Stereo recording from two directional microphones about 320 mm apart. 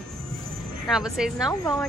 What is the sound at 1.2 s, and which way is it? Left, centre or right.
Speech, centre.